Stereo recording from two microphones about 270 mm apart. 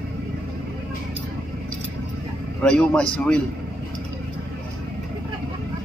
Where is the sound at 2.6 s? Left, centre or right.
Centre.